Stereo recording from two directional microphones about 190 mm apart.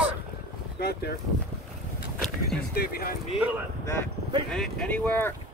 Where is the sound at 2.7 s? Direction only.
55° left (ahead or behind).